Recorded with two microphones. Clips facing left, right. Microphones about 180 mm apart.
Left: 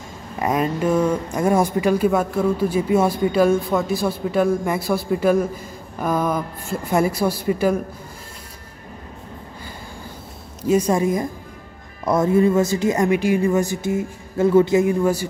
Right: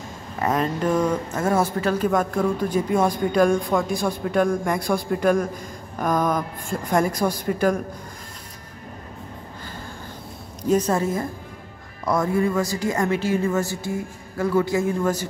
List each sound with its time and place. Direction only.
0.4 s speech: 10° left (ahead or behind)
10.7 s a woman's voice: 10° left (ahead or behind)